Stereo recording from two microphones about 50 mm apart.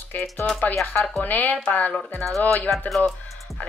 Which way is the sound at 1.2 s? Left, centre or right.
Left.